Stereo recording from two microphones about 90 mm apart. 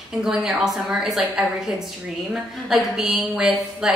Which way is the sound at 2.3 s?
5° right (ahead or behind).